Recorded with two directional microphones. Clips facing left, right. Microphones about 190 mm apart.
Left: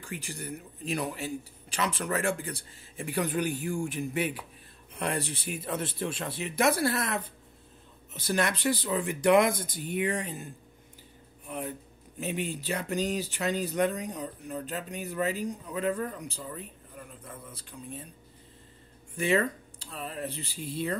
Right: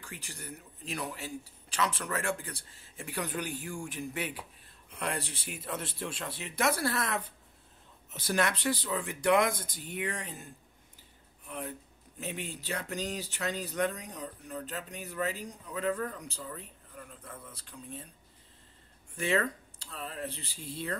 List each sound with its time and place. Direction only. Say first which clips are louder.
0.1 s speech: left 8 dB; 15° left (ahead or behind)
8.3 s speech: left 2 dB; centre (ahead or behind)
8.6 s speech: left 4 dB; 15° left (ahead or behind)
12.2 s speech: left 6 dB; 15° left (ahead or behind)
19.1 s speech: left 4 dB; 15° left (ahead or behind)